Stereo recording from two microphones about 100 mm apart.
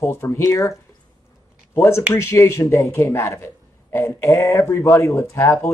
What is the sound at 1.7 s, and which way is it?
A man's voice, 25° left (ahead or behind).